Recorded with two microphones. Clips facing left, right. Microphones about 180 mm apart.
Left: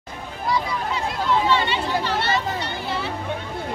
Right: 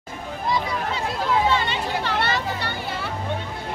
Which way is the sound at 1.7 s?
55° right (ahead or behind).